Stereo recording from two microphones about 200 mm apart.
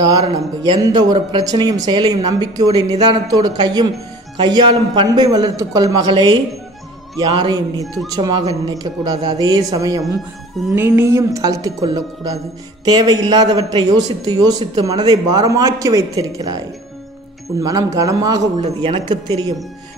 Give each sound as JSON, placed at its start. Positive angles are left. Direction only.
{"t": 0.2, "sound": "a man's voice", "side_deg": -20}
{"t": 7.8, "sound": "speech", "side_deg": 0}
{"t": 8.2, "sound": "a man's voice", "side_deg": -20}
{"t": 10.7, "sound": "music", "side_deg": -15}
{"t": 12.8, "sound": "a man's voice", "side_deg": -20}